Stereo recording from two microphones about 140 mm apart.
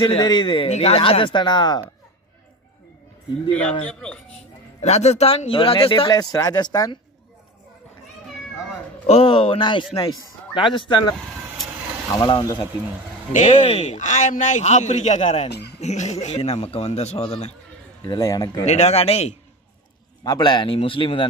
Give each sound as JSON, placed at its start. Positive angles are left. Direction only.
{"t": 0.2, "sound": "speech", "side_deg": 30}
{"t": 0.7, "sound": "speech", "side_deg": 50}
{"t": 3.8, "sound": "speech", "side_deg": 10}
{"t": 4.8, "sound": "speech", "side_deg": 50}
{"t": 9.0, "sound": "speech", "side_deg": 45}
{"t": 13.3, "sound": "a man's voice", "side_deg": 60}
{"t": 18.0, "sound": "speech", "side_deg": 25}
{"t": 18.7, "sound": "a man's voice", "side_deg": 50}
{"t": 20.2, "sound": "speech", "side_deg": 30}